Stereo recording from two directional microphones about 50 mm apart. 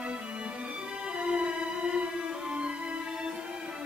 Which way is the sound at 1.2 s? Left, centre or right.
Centre.